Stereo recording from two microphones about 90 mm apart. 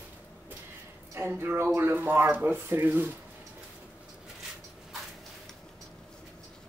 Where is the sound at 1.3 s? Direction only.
25° right (ahead or behind).